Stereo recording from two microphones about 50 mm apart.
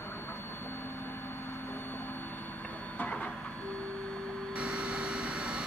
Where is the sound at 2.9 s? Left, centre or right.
Left.